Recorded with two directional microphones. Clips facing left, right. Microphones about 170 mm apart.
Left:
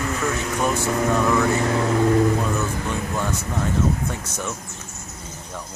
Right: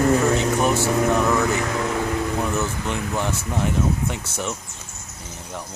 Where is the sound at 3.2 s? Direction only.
20° right (ahead or behind).